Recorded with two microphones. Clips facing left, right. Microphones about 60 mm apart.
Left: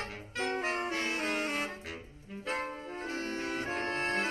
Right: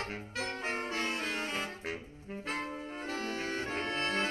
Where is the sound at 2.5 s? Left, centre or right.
Left.